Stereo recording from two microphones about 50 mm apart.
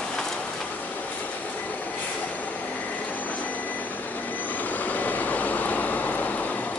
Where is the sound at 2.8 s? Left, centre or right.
Left.